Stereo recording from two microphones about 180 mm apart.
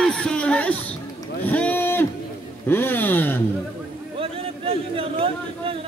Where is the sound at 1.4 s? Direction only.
10° left (ahead or behind).